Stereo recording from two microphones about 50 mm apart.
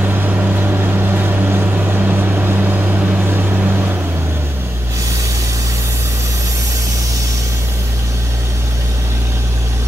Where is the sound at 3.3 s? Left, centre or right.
Right.